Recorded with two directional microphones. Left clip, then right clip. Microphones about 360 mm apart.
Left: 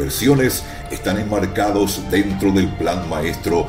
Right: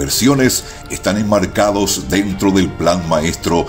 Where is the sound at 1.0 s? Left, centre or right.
Right.